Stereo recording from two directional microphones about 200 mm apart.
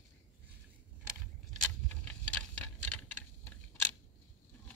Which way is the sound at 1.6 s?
5° left (ahead or behind).